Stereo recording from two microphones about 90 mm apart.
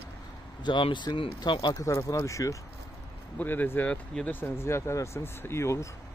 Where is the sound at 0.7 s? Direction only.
60° left (ahead or behind).